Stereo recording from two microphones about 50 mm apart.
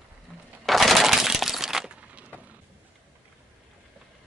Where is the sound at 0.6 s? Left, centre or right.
Centre.